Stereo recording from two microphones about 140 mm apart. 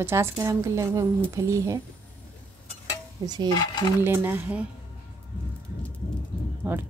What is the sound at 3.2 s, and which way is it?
Speech, 30° right (ahead or behind).